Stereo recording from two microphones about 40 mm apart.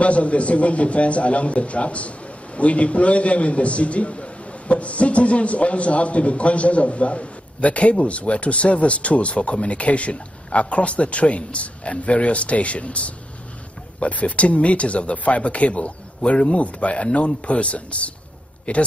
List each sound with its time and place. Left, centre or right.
0.0 s a man's voice: left